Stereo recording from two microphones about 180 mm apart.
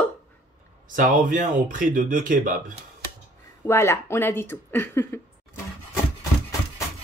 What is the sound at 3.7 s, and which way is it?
Speech, 15° left (ahead or behind).